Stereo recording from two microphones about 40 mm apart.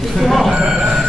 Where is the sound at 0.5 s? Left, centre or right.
Right.